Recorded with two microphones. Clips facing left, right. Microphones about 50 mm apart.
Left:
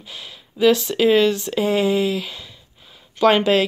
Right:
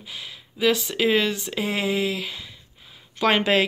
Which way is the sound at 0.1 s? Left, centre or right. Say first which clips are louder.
Left 1 dB; centre.